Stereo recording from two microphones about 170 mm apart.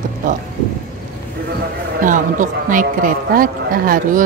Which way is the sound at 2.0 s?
50° right (ahead or behind).